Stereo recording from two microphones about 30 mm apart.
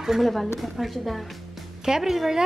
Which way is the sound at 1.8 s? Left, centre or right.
Centre.